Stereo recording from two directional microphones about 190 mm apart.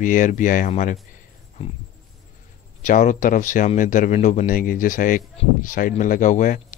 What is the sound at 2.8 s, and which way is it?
Speech, 40° left (ahead or behind).